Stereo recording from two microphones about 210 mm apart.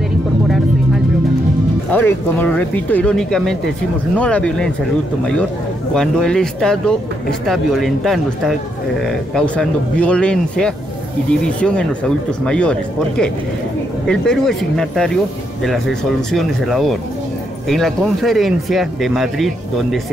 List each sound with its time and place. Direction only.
1.9 s speech: 10° left (ahead or behind)
5.9 s speech: 5° left (ahead or behind)